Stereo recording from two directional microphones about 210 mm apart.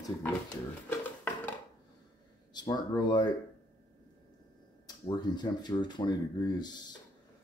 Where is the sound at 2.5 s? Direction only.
20° left (ahead or behind).